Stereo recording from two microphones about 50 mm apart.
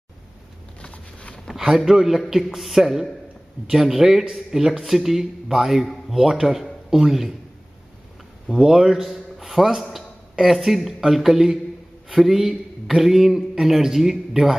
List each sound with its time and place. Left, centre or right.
0.7 s a sound: left
1.5 s a man's voice: centre
8.5 s a man's voice: centre